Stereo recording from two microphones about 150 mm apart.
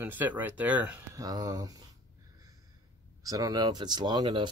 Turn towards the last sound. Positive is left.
turn(degrees=-30)  # may be behind; listen again after turning